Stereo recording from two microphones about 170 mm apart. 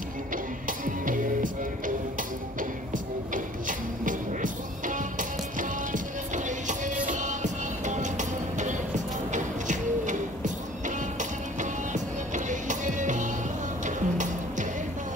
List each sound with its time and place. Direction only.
0.7 s music: 50° right (ahead or behind)
3.3 s music: 50° right (ahead or behind)
11.9 s music: 45° right (ahead or behind)